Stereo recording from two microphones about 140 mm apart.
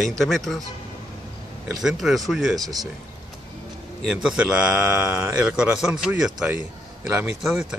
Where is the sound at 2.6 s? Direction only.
25° right (ahead or behind).